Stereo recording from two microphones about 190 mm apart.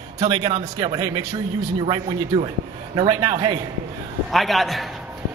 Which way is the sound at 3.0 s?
20° right (ahead or behind).